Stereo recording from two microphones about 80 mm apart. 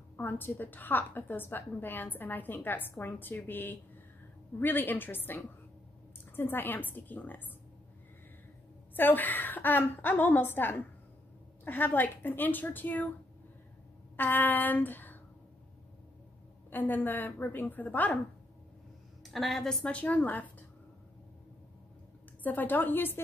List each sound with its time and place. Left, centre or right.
0.2 s a woman's voice: left
8.9 s a woman's voice: left
14.1 s speech: left
16.7 s a woman's voice: left
19.3 s a woman's voice: centre
19.8 s a woman's voice: centre
22.4 s a woman's voice: left